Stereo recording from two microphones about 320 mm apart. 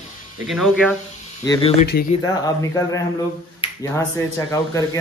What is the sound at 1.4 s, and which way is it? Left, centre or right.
Speech, centre.